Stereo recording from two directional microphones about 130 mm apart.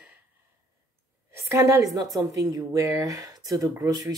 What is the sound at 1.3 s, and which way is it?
A woman's voice, 20° right (ahead or behind).